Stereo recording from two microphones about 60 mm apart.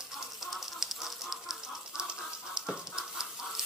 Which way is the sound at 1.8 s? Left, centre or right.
Centre.